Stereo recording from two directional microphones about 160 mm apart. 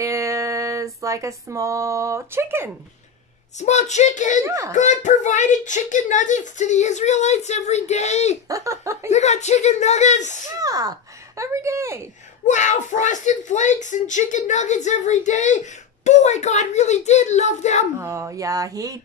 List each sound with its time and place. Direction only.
0.0 s a sound: 20° right (ahead or behind)
3.5 s speech: 45° left (ahead or behind)
4.4 s speech: 20° right (ahead or behind)
4.7 s speech: 50° left (ahead or behind)
8.5 s speech: 20° right (ahead or behind)
9.1 s speech: 45° left (ahead or behind)
10.6 s speech: 20° right (ahead or behind)
12.4 s speech: 50° left (ahead or behind)
18.0 s speech: 20° right (ahead or behind)